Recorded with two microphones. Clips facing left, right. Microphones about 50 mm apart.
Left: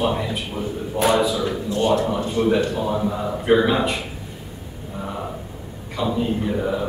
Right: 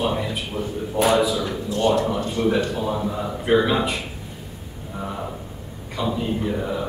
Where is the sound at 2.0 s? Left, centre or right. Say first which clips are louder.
Even; centre.